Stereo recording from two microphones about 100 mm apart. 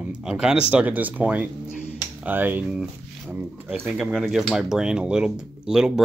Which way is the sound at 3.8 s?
Centre (ahead or behind).